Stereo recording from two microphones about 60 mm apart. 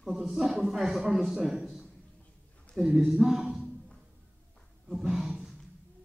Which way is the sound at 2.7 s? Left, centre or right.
Centre.